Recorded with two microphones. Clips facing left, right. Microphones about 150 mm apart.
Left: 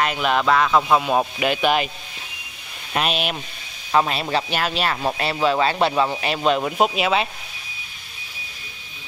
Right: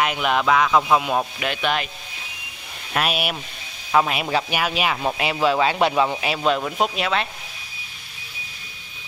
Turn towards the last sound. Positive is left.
turn(degrees=10)  # may be behind; listen again after turning